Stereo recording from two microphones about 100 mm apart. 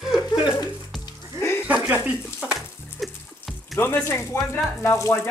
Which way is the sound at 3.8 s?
25° left (ahead or behind).